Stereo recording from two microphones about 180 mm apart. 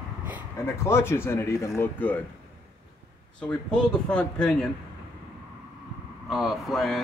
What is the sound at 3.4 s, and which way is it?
Speech, 5° left (ahead or behind).